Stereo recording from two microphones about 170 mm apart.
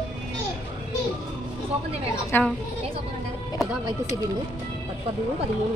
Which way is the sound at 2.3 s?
10° left (ahead or behind).